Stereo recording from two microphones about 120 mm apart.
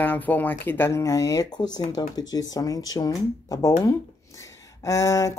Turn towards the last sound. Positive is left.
turn(degrees=25)  # may be behind; listen again after turning